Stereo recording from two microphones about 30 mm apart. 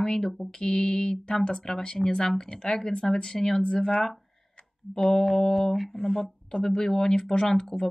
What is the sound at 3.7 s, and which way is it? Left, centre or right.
Speech, left.